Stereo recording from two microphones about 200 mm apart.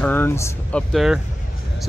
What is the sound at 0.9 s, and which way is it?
Speech, centre (ahead or behind).